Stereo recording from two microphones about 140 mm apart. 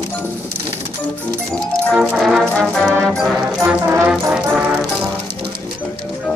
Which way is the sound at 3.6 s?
15° right (ahead or behind).